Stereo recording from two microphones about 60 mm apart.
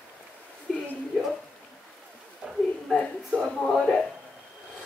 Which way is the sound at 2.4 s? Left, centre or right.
Centre.